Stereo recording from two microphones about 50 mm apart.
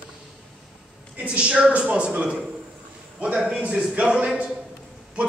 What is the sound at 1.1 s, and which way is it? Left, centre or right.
A man's voice, right.